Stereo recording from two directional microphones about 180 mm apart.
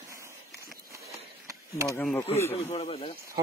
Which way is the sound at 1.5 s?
15° right (ahead or behind).